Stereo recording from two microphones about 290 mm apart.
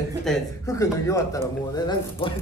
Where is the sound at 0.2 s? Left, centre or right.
Centre.